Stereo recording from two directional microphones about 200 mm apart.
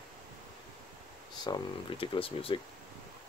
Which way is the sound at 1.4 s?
25° left (ahead or behind).